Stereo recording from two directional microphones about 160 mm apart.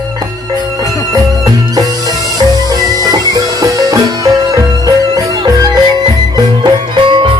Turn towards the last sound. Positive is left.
turn(degrees=-30)  # may be behind; listen again after turning